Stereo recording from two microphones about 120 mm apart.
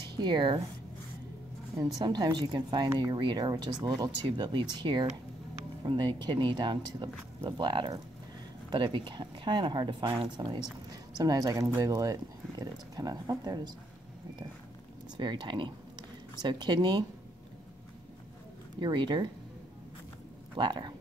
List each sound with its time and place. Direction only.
0.1 s speech: 40° right (ahead or behind)
1.8 s speech: 35° right (ahead or behind)
15.1 s speech: 40° right (ahead or behind)
18.8 s speech: 40° right (ahead or behind)
20.5 s speech: 40° right (ahead or behind)